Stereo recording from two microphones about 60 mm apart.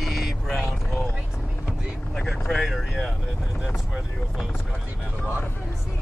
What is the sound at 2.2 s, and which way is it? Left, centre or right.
Speech, centre.